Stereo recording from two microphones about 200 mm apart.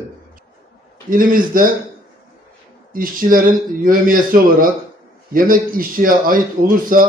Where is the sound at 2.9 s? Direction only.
45° right (ahead or behind).